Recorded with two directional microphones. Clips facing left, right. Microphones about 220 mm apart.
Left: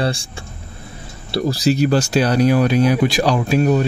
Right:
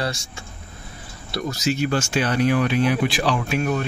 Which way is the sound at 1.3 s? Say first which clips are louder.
Left 7 dB; 35° left (ahead or behind).